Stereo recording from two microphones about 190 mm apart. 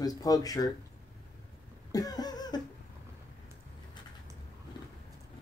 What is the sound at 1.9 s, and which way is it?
Cough, 20° left (ahead or behind).